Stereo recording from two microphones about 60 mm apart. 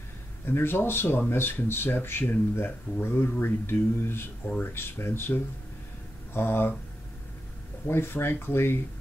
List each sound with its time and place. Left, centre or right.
0.5 s speech: left
7.8 s speech: left